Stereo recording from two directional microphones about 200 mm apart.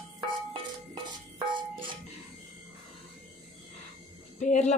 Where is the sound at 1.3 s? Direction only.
25° right (ahead or behind).